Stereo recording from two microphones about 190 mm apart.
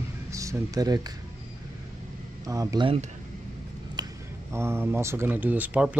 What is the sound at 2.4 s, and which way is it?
Speech, 20° right (ahead or behind).